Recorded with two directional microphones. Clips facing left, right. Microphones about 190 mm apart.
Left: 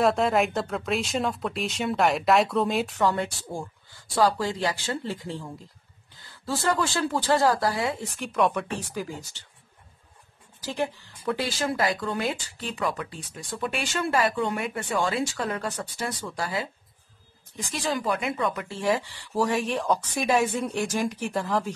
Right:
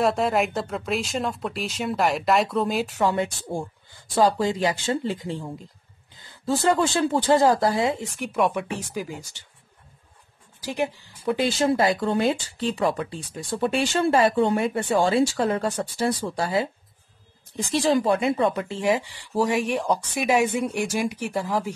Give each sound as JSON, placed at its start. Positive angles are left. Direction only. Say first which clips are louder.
{"t": 0.0, "sound": "speech", "louder": "even", "side_deg": 0}
{"t": 3.0, "sound": "a woman's voice", "louder": "right 2 dB", "side_deg": -15}
{"t": 8.2, "sound": "a woman's voice", "louder": "even", "side_deg": -10}
{"t": 10.6, "sound": "speech", "louder": "right 2 dB", "side_deg": -15}
{"t": 11.3, "sound": "speech", "louder": "right 8 dB", "side_deg": -25}
{"t": 18.7, "sound": "a woman's voice", "louder": "right 3 dB", "side_deg": -15}